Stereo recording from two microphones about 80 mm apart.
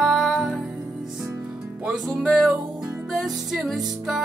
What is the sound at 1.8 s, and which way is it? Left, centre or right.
Music, centre.